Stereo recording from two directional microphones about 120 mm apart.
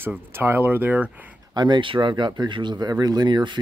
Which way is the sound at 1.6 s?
40° right (ahead or behind).